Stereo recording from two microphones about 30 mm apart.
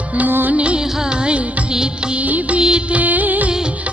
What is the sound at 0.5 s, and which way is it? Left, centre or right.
Music, right.